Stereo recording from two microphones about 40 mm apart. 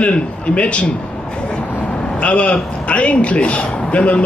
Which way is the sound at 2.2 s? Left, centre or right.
Left.